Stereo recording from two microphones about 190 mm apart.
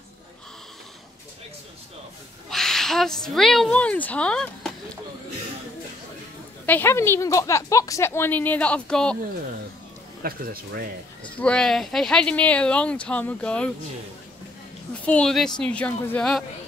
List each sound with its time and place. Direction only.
2.5 s speech: centre (ahead or behind)
6.6 s a woman's voice: 10° left (ahead or behind)
10.2 s speech: 50° right (ahead or behind)
11.3 s speech: 5° left (ahead or behind)
15.0 s speech: 5° left (ahead or behind)